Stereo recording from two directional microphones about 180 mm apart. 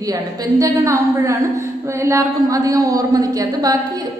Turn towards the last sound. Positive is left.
turn(degrees=-20)  # may be behind; listen again after turning